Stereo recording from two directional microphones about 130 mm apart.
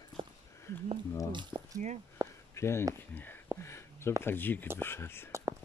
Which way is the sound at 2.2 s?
25° right (ahead or behind).